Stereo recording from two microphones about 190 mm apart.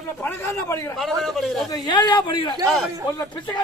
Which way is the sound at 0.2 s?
15° left (ahead or behind).